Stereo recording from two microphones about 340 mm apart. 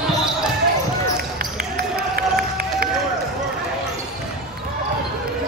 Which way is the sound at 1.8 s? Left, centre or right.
Right.